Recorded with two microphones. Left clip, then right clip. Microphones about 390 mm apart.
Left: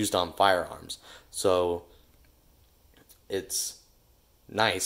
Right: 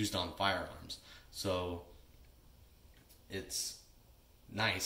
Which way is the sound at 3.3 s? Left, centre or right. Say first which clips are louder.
Left 9 dB; left.